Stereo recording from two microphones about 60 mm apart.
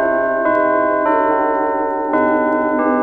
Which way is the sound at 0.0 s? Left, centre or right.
Centre.